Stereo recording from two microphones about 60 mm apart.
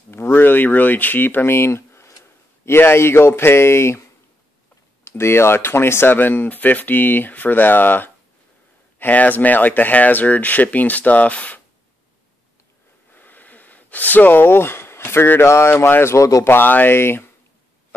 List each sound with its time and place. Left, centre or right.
0.1 s speech: left
5.0 s speech: left
13.1 s speech: left
16.2 s speech: left
16.4 s speech: left